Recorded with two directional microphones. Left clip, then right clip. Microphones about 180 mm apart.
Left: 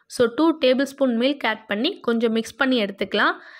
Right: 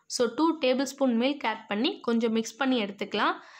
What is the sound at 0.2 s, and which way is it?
Speech, 20° left (ahead or behind).